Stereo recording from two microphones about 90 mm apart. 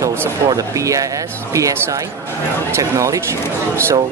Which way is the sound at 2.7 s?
35° right (ahead or behind).